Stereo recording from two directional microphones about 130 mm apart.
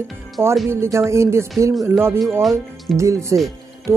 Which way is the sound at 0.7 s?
20° right (ahead or behind).